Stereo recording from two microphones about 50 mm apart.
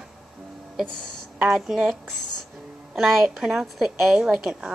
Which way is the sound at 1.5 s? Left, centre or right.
Centre.